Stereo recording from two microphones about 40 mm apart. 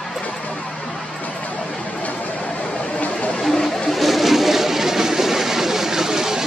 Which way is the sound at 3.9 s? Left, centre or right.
Centre.